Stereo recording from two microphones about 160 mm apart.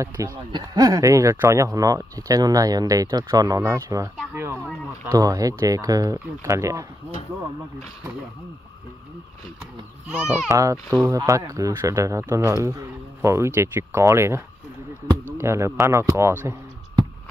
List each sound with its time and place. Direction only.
0.0 s speech: 20° right (ahead or behind)
10.0 s a child's voice: 5° right (ahead or behind)
10.5 s speech: 20° right (ahead or behind)